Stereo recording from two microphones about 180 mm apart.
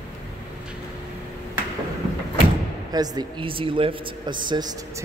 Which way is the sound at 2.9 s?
20° right (ahead or behind).